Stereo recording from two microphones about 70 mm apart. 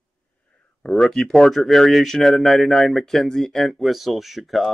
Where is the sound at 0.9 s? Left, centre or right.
Centre.